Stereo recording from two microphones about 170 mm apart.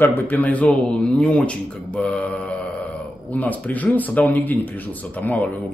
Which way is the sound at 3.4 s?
10° left (ahead or behind).